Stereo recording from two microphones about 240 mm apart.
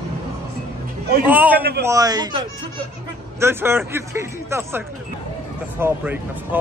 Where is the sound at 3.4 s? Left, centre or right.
Centre.